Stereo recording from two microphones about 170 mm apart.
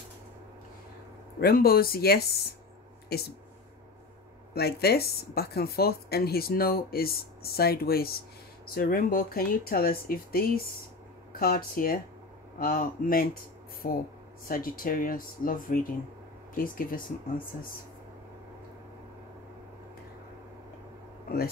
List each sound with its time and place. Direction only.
1.4 s speech: 60° left (ahead or behind)
4.6 s speech: 70° left (ahead or behind)